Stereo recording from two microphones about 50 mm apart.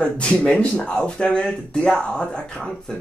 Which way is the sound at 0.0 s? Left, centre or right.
Left.